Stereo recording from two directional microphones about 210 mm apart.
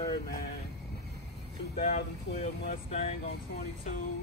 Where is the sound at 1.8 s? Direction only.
35° left (ahead or behind).